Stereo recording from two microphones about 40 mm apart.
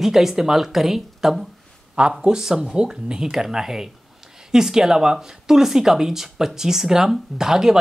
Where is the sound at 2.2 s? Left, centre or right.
Centre.